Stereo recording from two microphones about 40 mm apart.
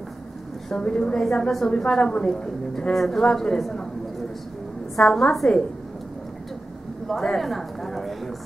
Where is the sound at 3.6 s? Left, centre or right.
Centre.